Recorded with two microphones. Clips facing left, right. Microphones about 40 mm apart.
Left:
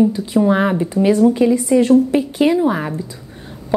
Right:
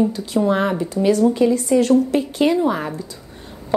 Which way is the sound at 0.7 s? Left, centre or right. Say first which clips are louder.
Left 3 dB; left.